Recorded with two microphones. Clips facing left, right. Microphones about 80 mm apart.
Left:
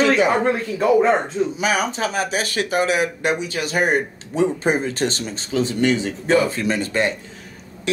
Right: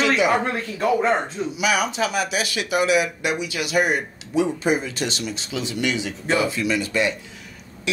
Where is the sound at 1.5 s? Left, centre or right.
Left.